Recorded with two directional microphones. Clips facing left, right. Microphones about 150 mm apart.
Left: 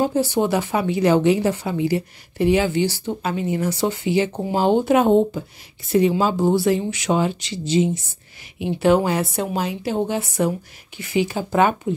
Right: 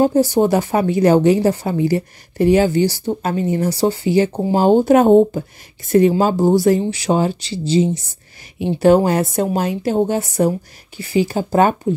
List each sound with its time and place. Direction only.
0.0 s a woman's voice: 40° right (ahead or behind)